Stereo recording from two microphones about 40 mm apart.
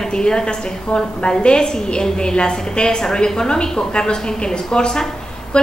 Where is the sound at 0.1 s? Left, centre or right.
Centre.